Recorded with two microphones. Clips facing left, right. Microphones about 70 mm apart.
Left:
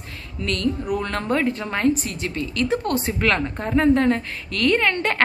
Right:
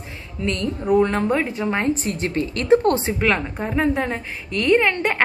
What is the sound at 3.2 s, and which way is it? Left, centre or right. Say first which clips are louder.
A woman's voice: right 1 dB; centre.